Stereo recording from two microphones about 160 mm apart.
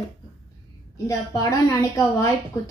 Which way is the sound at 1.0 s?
20° left (ahead or behind).